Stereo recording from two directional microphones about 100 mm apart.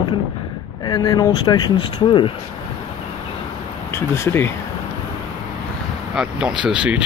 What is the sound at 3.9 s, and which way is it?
Speech, 25° left (ahead or behind).